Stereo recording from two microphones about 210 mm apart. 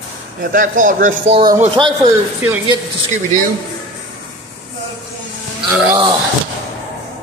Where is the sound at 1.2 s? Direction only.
30° right (ahead or behind).